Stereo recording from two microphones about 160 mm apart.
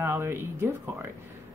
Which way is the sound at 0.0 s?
20° right (ahead or behind).